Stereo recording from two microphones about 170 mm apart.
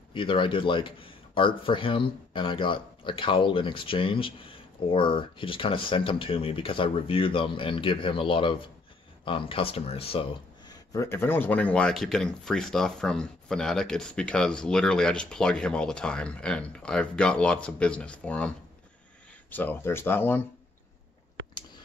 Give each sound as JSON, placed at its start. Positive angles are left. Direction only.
{"t": 0.1, "sound": "speech", "side_deg": 30}
{"t": 19.5, "sound": "speech", "side_deg": 10}